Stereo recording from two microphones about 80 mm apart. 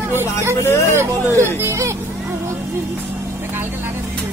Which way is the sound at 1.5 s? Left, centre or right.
Right.